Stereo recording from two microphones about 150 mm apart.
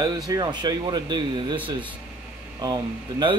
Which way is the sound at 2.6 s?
30° right (ahead or behind).